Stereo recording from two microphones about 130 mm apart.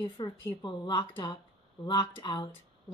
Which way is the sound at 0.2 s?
35° left (ahead or behind).